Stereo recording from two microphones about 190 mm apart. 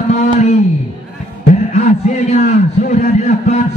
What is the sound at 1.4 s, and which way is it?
A man's voice, 40° left (ahead or behind).